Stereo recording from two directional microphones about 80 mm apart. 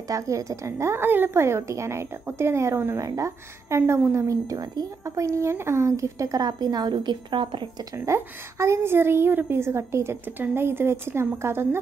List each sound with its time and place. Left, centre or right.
0.1 s a woman's voice: right
8.0 s a woman's voice: right